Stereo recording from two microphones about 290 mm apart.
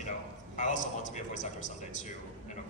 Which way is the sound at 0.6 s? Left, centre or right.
Left.